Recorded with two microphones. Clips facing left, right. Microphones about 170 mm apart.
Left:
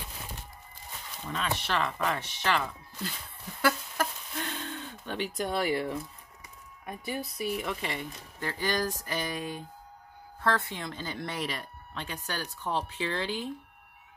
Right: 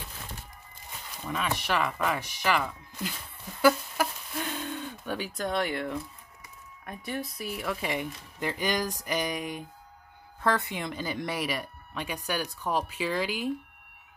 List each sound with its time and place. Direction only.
1.3 s speech: 10° right (ahead or behind)
3.6 s a sound: 10° right (ahead or behind)
6.9 s speech: 5° left (ahead or behind)
7.9 s speech: 15° right (ahead or behind)